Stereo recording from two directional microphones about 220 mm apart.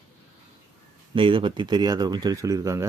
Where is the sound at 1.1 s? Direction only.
25° right (ahead or behind).